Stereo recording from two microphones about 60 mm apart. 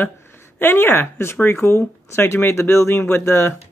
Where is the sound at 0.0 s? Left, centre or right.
Left.